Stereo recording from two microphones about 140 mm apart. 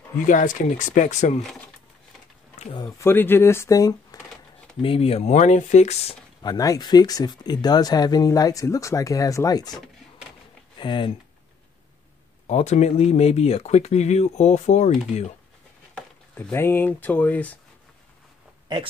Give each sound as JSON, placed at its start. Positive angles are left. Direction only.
{"t": 0.3, "sound": "speech", "side_deg": 70}
{"t": 2.7, "sound": "speech", "side_deg": 30}
{"t": 3.1, "sound": "speech", "side_deg": 15}
{"t": 4.8, "sound": "speech", "side_deg": 45}
{"t": 6.4, "sound": "speech", "side_deg": 25}
{"t": 10.8, "sound": "speech", "side_deg": 35}
{"t": 12.4, "sound": "speech", "side_deg": 55}
{"t": 15.9, "sound": "a sound", "side_deg": 5}
{"t": 16.5, "sound": "speech", "side_deg": 15}